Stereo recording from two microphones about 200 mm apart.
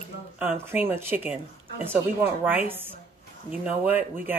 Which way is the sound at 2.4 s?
10° right (ahead or behind).